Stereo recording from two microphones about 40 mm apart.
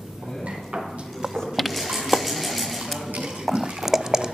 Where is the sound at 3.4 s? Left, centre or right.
Centre.